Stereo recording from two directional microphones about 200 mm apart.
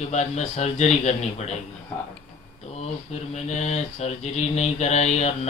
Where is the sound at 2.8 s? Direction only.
35° left (ahead or behind).